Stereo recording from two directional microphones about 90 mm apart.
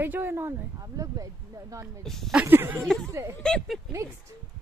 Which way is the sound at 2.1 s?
Centre (ahead or behind).